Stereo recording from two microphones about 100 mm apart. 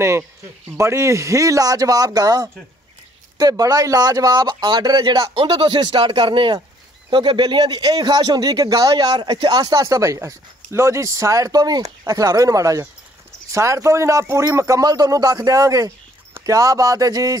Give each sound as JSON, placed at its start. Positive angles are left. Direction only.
{"t": 0.7, "sound": "speech", "side_deg": -30}